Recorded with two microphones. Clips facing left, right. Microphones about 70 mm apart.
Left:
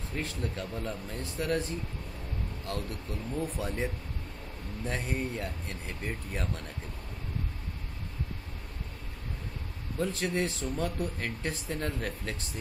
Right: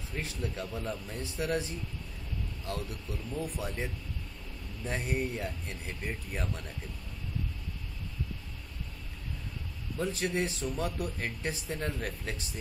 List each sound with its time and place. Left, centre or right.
0.2 s speech: centre
3.3 s speech: centre
4.8 s speech: centre
9.9 s speech: centre